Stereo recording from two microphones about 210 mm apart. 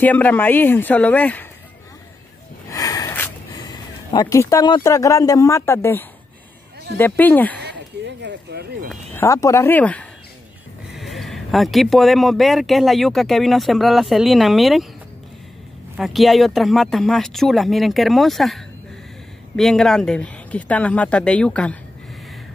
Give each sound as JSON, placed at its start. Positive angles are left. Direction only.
{"t": 0.0, "sound": "speech", "side_deg": 10}
{"t": 2.7, "sound": "a sound", "side_deg": 15}
{"t": 7.0, "sound": "speech", "side_deg": 10}
{"t": 8.2, "sound": "speech", "side_deg": -55}
{"t": 8.8, "sound": "speech", "side_deg": 10}
{"t": 16.0, "sound": "speech", "side_deg": 0}